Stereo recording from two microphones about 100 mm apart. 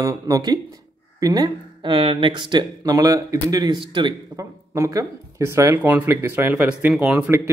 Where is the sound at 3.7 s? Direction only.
55° right (ahead or behind).